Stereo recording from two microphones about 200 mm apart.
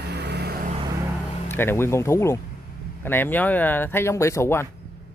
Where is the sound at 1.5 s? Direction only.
10° left (ahead or behind).